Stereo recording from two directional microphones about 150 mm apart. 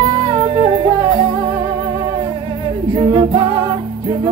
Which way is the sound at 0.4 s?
35° right (ahead or behind).